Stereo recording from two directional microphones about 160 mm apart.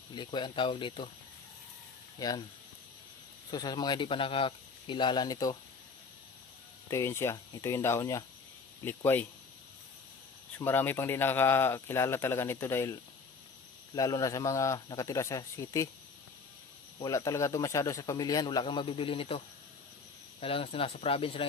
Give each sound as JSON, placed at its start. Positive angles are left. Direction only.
{"t": 0.1, "sound": "speech", "side_deg": 30}
{"t": 2.1, "sound": "speech", "side_deg": 25}
{"t": 3.4, "sound": "speech", "side_deg": 25}
{"t": 6.9, "sound": "speech", "side_deg": 15}
{"t": 10.6, "sound": "speech", "side_deg": 15}
{"t": 17.0, "sound": "speech", "side_deg": 20}